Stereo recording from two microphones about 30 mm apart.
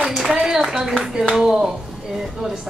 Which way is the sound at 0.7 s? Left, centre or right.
Centre.